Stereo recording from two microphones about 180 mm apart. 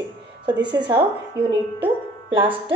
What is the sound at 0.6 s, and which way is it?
Speech, 70° right (ahead or behind).